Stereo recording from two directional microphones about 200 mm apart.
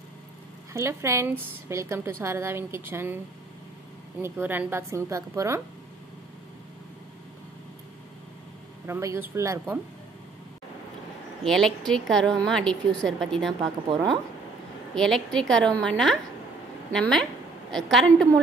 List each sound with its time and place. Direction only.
0.7 s a woman's voice: 15° right (ahead or behind)
4.2 s a woman's voice: 10° right (ahead or behind)
8.8 s a woman's voice: 15° right (ahead or behind)
11.4 s a woman's voice: centre (ahead or behind)
15.0 s a woman's voice: centre (ahead or behind)